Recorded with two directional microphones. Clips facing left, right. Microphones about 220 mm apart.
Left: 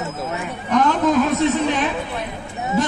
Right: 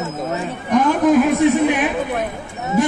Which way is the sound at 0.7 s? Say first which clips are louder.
Right 3 dB; 10° right (ahead or behind).